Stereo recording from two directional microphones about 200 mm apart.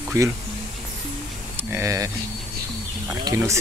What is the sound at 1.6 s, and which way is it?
Speech, 10° right (ahead or behind).